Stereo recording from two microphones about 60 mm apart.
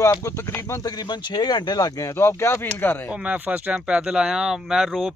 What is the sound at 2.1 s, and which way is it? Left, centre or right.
Speech, left.